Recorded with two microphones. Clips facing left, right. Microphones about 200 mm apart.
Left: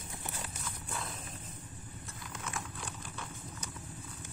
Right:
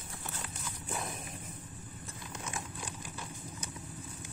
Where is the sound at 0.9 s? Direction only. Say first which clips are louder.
Right 4 dB; 20° right (ahead or behind).